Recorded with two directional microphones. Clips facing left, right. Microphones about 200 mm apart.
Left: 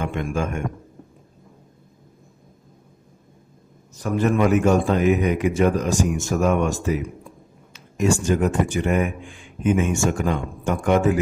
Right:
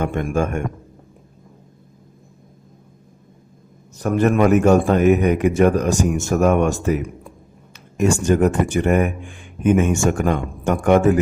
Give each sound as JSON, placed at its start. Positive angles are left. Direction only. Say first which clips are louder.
{"t": 0.0, "sound": "a man's voice", "louder": "right 4 dB", "side_deg": -50}
{"t": 4.0, "sound": "speech", "louder": "right 3 dB", "side_deg": -60}